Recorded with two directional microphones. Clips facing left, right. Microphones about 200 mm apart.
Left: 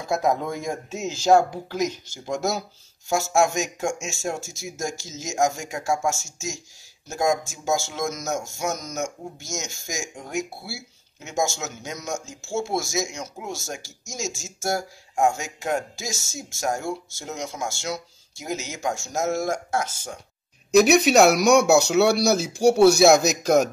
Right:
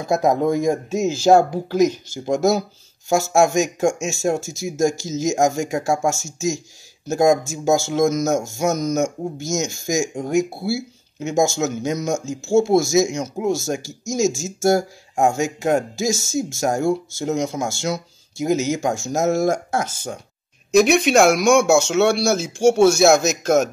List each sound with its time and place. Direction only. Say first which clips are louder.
0.1 s speech: right 6 dB; 40° right (ahead or behind)
7.1 s speech: right 7 dB; 40° right (ahead or behind)
20.7 s speech: right 1 dB; centre (ahead or behind)